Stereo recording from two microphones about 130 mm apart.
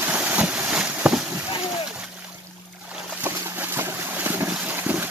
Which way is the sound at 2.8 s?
15° right (ahead or behind).